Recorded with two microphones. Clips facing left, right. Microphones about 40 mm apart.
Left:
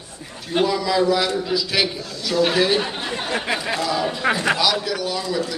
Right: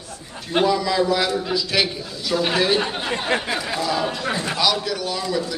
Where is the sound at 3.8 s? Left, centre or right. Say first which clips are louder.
Left 3 dB; centre.